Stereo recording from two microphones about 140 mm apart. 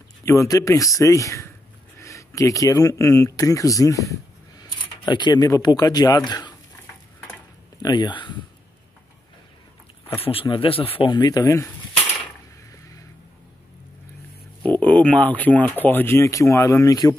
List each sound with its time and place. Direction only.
0.2 s speech: 20° left (ahead or behind)
7.8 s speech: 30° left (ahead or behind)
10.2 s speech: 40° left (ahead or behind); by 11.7 s 25° left (ahead or behind)
14.7 s speech: 10° left (ahead or behind); by 17.2 s 25° left (ahead or behind)